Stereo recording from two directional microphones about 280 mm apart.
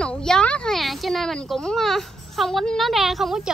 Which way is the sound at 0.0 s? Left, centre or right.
Centre.